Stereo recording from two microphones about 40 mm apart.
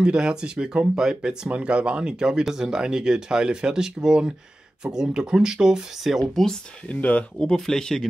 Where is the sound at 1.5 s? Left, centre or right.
Right; by 6.4 s centre.